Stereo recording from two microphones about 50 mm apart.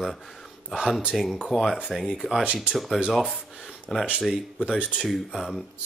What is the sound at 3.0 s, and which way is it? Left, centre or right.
Speech, centre.